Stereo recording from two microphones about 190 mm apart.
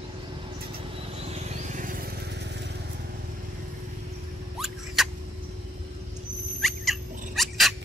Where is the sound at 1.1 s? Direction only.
35° right (ahead or behind); by 2.7 s 60° right (ahead or behind).